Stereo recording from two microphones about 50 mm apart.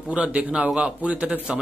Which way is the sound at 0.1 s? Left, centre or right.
Right.